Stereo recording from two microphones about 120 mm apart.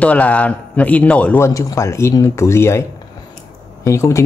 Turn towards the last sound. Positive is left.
turn(degrees=25)  # may be behind; listen again after turning